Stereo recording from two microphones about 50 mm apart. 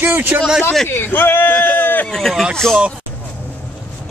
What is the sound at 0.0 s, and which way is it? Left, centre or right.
Speech, right.